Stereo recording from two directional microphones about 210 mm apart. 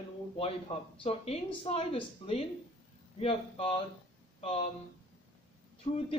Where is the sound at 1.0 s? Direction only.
30° left (ahead or behind).